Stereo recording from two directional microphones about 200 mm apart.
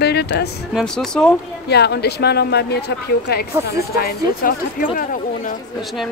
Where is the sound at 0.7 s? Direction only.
5° left (ahead or behind).